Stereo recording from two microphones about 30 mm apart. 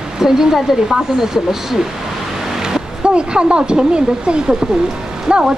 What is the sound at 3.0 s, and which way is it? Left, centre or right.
Speech, right.